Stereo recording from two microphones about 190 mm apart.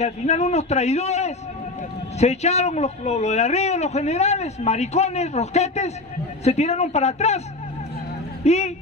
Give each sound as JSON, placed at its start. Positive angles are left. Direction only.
{"t": 0.0, "sound": "a man's voice", "side_deg": 35}
{"t": 8.5, "sound": "a man's voice", "side_deg": 35}